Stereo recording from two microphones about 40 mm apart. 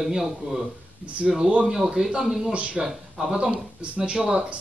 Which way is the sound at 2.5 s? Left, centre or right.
Right.